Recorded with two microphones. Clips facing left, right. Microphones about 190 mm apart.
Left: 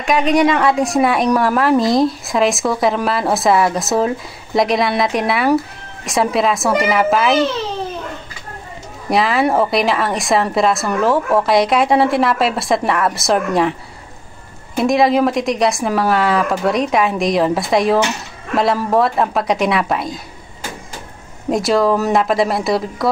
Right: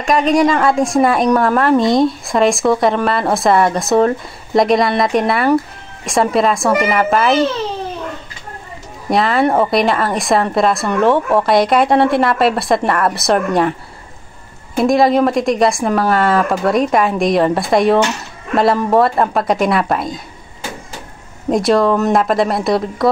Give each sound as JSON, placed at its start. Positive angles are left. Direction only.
{"t": 0.0, "sound": "a woman's voice", "side_deg": 0}
{"t": 9.1, "sound": "a woman's voice", "side_deg": 0}
{"t": 14.8, "sound": "a woman's voice", "side_deg": 0}
{"t": 21.5, "sound": "a woman's voice", "side_deg": 0}